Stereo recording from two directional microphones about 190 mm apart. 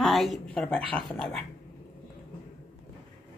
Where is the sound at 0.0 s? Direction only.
Centre (ahead or behind).